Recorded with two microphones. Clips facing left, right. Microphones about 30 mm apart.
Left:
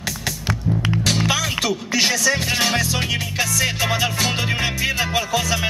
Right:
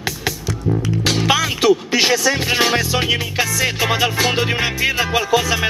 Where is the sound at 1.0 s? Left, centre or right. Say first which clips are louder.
Right 5 dB; centre.